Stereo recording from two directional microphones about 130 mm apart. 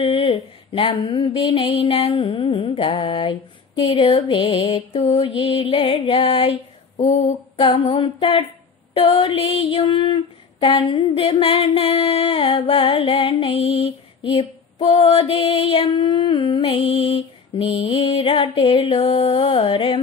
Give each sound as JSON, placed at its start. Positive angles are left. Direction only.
{"t": 0.0, "sound": "female singing", "side_deg": 45}
{"t": 7.5, "sound": "female singing", "side_deg": 40}